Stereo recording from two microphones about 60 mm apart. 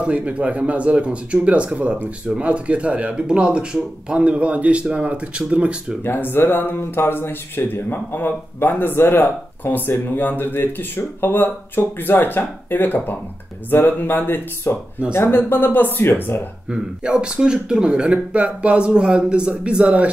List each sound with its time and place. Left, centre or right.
0.0 s speech: right
6.0 s speech: left
16.7 s speech: centre